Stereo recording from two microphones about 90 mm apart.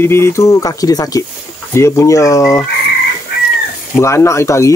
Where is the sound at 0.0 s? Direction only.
30° left (ahead or behind).